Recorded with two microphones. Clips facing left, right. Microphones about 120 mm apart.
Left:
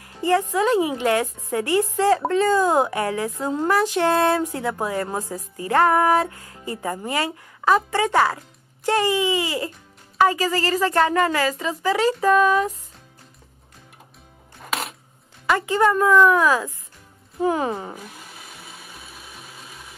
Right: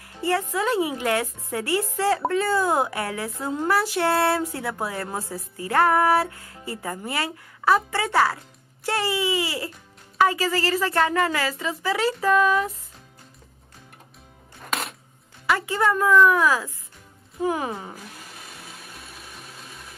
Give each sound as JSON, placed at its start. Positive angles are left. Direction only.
{"t": 0.2, "sound": "a woman's voice", "side_deg": 15}
{"t": 14.6, "sound": "music", "side_deg": 0}
{"t": 15.4, "sound": "a woman's voice", "side_deg": 20}
{"t": 17.9, "sound": "a sound", "side_deg": 0}